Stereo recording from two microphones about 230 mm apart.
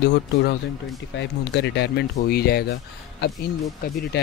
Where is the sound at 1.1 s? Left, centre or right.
Left.